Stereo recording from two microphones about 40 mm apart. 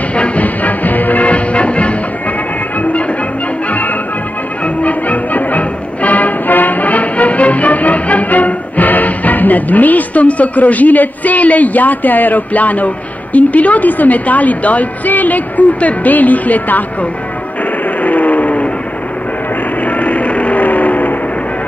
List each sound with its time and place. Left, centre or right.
0.1 s music: left
4.8 s music: left
18.0 s train: left
19.8 s vehicle: left